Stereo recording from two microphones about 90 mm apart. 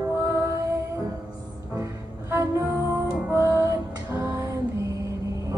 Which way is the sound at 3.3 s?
30° right (ahead or behind).